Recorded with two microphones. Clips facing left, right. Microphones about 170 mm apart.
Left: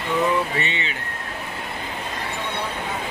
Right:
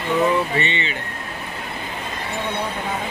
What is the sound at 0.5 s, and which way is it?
Speech, 5° left (ahead or behind).